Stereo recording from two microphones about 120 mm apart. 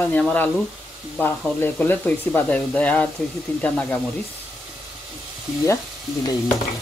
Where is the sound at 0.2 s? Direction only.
10° left (ahead or behind).